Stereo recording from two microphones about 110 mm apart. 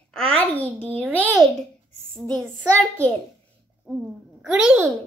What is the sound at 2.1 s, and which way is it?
Speech, 10° left (ahead or behind).